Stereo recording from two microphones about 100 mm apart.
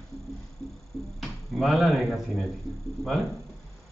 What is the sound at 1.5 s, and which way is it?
Speech, centre (ahead or behind).